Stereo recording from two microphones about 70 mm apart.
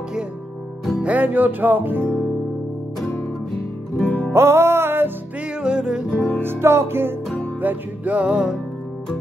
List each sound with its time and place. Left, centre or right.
1.0 s music: right
4.3 s music: right
5.6 s music: centre
6.1 s music: left
6.4 s music: right
7.6 s music: right